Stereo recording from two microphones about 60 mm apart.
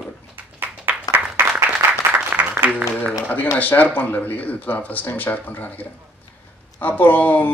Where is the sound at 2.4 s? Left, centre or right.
Right.